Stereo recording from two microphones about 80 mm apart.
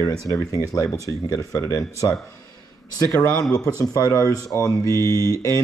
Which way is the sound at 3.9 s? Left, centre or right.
Left.